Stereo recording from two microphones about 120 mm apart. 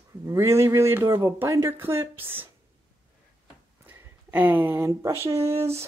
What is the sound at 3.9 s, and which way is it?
Speech, 15° right (ahead or behind).